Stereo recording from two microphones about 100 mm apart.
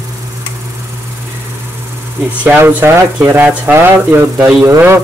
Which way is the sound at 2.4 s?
20° right (ahead or behind).